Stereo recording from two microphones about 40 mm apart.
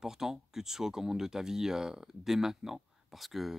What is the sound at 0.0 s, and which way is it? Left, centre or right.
Speech, centre.